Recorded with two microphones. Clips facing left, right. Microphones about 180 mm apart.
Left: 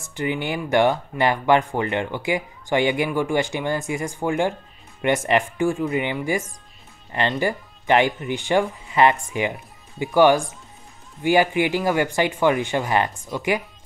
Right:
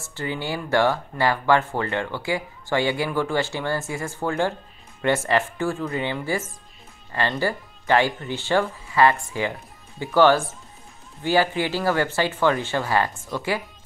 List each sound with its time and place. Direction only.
0.0 s speech: 15° left (ahead or behind)